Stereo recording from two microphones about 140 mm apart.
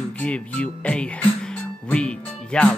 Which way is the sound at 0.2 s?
10° left (ahead or behind).